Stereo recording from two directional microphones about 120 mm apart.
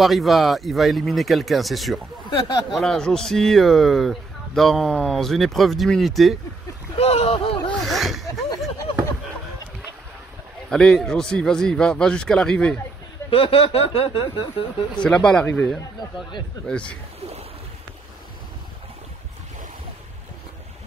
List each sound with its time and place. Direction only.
0.0 s speech: centre (ahead or behind)
2.2 s speech: 35° left (ahead or behind)
2.7 s speech: 5° left (ahead or behind)
7.0 s a sound: 55° left (ahead or behind)
7.7 s a sound: centre (ahead or behind)
10.7 s a man's voice: 5° left (ahead or behind)
13.3 s speech: 50° left (ahead or behind)
15.0 s a man's voice: 5° left (ahead or behind)
16.6 s a man's voice: 10° left (ahead or behind)